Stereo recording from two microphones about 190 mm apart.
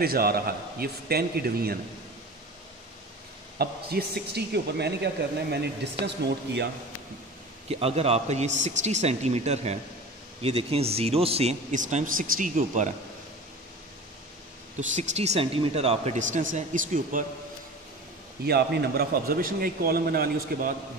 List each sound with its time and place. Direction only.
0.0 s a man's voice: 55° right (ahead or behind)
3.5 s a woman's voice: 55° right (ahead or behind)
7.8 s speech: 35° right (ahead or behind)
14.8 s a man's voice: 40° right (ahead or behind)
18.4 s a man's voice: 60° right (ahead or behind)